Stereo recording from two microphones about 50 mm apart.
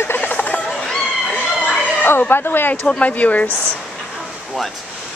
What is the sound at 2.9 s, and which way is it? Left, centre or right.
Speech, left.